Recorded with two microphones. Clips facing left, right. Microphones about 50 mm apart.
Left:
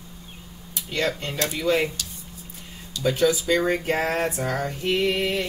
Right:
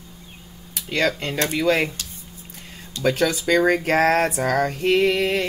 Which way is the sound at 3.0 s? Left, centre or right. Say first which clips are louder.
Right 1 dB; right.